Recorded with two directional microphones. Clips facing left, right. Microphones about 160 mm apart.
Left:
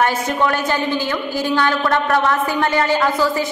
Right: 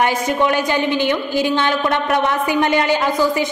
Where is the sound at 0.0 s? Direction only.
15° right (ahead or behind).